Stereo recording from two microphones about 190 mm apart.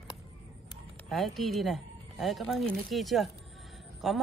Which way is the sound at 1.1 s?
Centre (ahead or behind).